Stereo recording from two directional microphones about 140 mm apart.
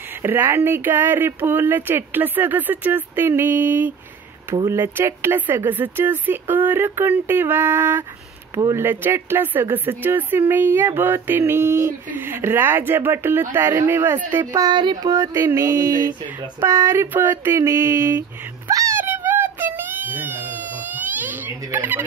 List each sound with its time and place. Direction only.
0.2 s speech: 15° right (ahead or behind)
14.4 s a woman's voice: 30° right (ahead or behind)
15.1 s a sound: 20° right (ahead or behind)